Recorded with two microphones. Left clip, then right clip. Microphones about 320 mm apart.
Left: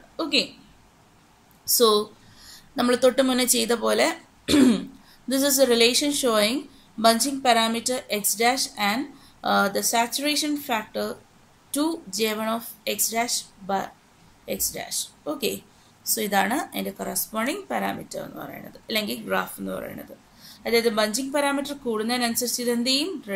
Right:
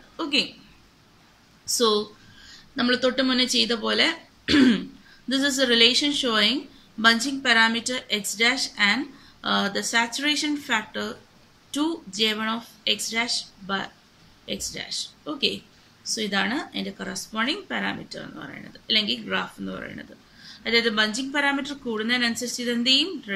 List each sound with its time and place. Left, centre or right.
0.2 s a woman's voice: centre
1.7 s a woman's voice: centre